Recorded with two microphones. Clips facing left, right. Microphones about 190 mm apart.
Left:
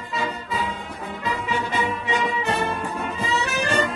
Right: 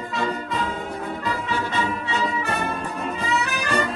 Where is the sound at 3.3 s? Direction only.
30° left (ahead or behind).